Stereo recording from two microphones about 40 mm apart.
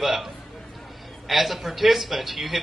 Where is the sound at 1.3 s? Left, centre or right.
Centre.